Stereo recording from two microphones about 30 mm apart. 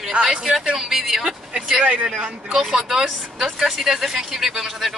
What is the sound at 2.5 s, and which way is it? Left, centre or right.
Speech, centre.